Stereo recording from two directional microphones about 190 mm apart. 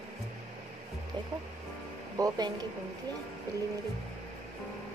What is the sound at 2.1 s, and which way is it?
Speech, 20° right (ahead or behind).